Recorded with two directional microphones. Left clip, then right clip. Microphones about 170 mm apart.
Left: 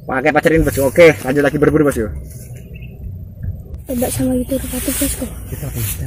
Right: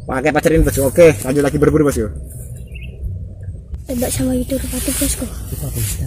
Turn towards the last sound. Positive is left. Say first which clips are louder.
# left 1 dB
turn(degrees=-10)  # may be behind; listen again after turning